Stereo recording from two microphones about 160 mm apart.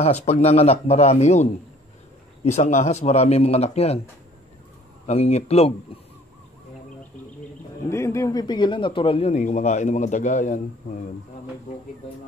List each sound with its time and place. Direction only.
0.0 s speech: 40° left (ahead or behind)
5.0 s speech: 45° left (ahead or behind)
7.9 s a man's voice: 15° left (ahead or behind); by 10.6 s 50° left (ahead or behind)